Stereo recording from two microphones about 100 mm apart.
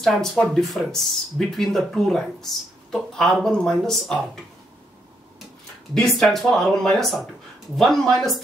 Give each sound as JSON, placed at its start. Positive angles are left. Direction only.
{"t": 0.0, "sound": "speech", "side_deg": 5}
{"t": 5.9, "sound": "speech", "side_deg": 5}